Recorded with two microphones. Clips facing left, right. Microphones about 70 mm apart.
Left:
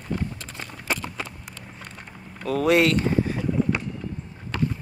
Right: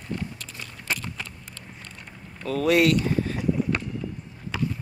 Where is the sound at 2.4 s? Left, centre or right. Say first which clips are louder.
Left 2 dB; centre.